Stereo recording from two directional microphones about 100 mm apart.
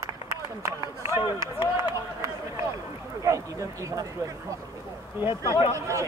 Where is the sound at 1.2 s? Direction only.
45° left (ahead or behind).